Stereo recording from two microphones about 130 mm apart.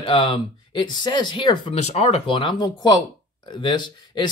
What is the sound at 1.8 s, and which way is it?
Speech, 55° left (ahead or behind).